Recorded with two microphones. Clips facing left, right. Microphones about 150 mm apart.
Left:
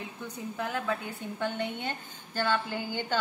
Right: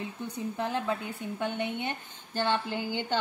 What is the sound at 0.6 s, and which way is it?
A woman's voice, 25° right (ahead or behind).